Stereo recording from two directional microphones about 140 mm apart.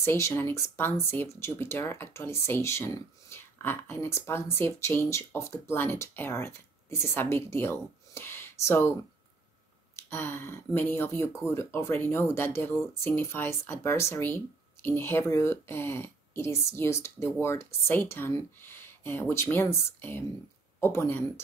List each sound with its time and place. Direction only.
0.0 s speech: 20° left (ahead or behind)
9.9 s speech: 15° left (ahead or behind)